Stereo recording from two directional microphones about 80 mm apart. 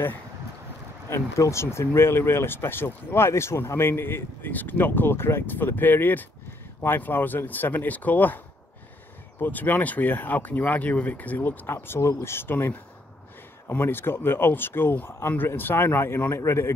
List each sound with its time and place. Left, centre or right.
1.1 s speech: left
9.4 s speech: left